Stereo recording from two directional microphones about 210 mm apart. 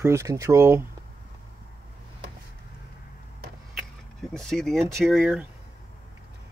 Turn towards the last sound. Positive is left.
turn(degrees=0)  # may be behind; listen again after turning